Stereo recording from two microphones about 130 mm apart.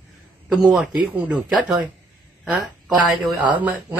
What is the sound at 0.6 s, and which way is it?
A woman's voice, 5° right (ahead or behind).